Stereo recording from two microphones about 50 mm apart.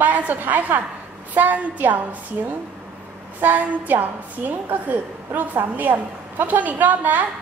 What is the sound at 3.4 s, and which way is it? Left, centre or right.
A woman's voice, right.